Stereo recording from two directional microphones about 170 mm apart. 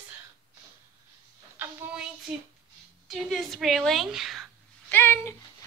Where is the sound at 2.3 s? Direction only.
5° right (ahead or behind).